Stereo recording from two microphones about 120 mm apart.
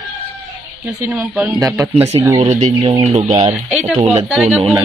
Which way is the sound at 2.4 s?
75° right (ahead or behind).